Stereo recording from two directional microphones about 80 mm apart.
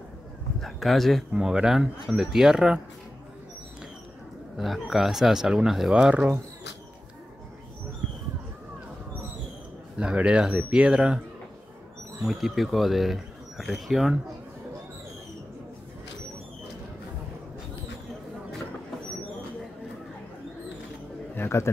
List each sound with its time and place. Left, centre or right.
0.6 s speech: centre
4.6 s speech: centre
9.9 s speech: centre
12.2 s speech: centre
21.4 s a sound: left